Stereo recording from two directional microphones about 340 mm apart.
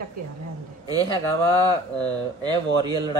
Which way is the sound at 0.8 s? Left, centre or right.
Centre.